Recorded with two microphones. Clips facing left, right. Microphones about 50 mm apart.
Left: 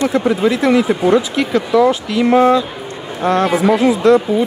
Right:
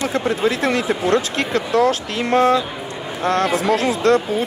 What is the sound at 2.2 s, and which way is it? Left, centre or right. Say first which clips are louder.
Speech: left 4 dB; left.